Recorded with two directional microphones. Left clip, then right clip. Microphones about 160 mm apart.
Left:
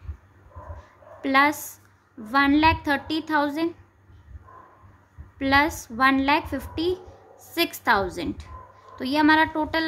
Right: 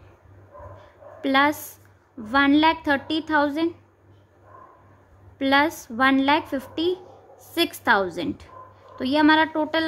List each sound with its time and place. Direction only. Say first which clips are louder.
1.2 s a woman's voice: even; 10° right (ahead or behind)
5.4 s a woman's voice: right 1 dB; 10° right (ahead or behind)